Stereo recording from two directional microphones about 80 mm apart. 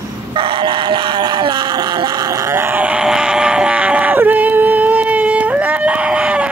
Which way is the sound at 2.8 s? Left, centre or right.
Centre.